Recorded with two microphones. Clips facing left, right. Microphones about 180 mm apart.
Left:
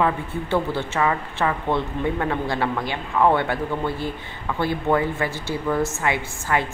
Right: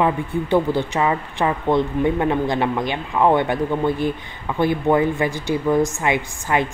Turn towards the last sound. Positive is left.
turn(degrees=-20)  # may be behind; listen again after turning